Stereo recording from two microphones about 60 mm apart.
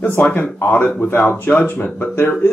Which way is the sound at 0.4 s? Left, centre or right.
Left.